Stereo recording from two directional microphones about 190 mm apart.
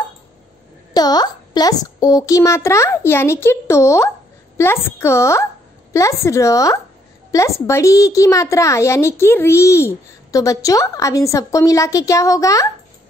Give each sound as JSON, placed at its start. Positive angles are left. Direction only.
{"t": 0.9, "sound": "a child's voice", "side_deg": 20}